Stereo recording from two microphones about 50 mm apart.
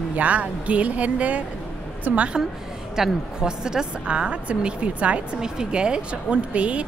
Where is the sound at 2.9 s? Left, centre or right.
Centre.